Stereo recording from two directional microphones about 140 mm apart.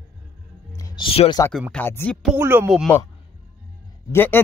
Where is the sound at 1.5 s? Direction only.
5° left (ahead or behind).